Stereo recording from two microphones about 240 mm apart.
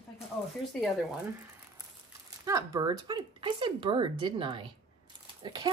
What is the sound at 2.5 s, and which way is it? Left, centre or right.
Speech, centre.